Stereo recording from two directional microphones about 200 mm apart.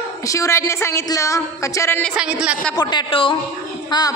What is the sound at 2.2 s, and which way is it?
Speech, 5° right (ahead or behind).